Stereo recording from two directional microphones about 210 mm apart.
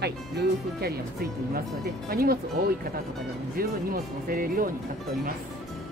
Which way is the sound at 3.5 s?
45° right (ahead or behind).